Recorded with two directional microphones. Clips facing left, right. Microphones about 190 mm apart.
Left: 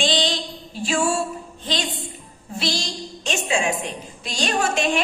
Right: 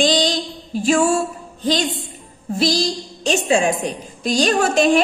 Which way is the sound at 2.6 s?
40° right (ahead or behind).